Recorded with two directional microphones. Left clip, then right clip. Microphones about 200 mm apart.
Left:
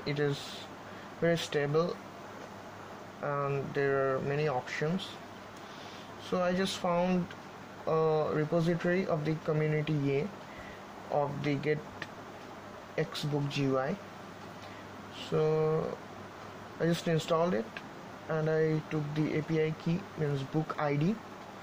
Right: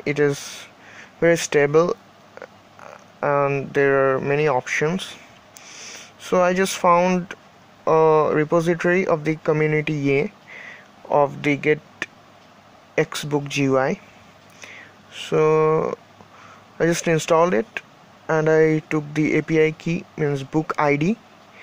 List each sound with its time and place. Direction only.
0.2 s speech: 35° right (ahead or behind)
3.2 s speech: 35° right (ahead or behind)
6.3 s speech: 40° right (ahead or behind)
15.2 s speech: 35° right (ahead or behind)
16.8 s speech: 35° right (ahead or behind)